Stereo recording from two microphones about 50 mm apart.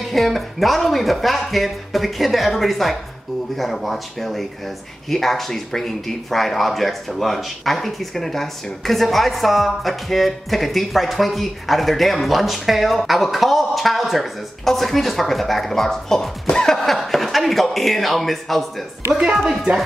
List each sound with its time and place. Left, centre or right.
0.1 s speech: centre